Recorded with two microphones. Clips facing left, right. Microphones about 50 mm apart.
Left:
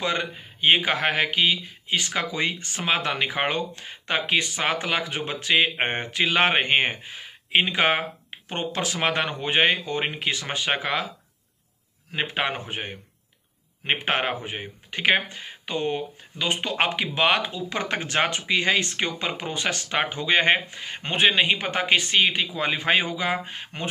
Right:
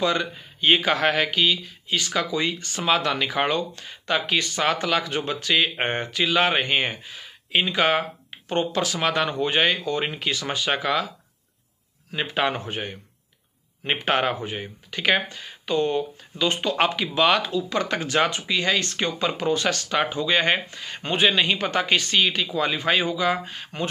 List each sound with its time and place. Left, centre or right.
0.0 s speech: left
6.0 s speech: left
12.4 s speech: left